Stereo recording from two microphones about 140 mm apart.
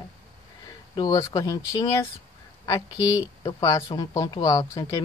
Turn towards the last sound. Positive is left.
turn(degrees=25)  # may be behind; listen again after turning